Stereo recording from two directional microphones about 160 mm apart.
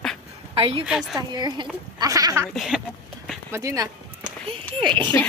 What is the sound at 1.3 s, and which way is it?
Speech, 25° right (ahead or behind).